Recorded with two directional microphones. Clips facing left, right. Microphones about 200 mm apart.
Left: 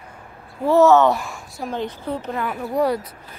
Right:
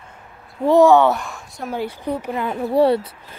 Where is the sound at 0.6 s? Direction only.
15° right (ahead or behind).